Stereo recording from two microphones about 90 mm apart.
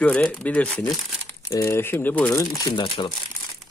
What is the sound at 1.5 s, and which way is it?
Speech, 30° left (ahead or behind).